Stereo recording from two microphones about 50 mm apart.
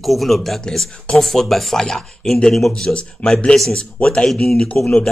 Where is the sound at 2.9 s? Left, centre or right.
Left.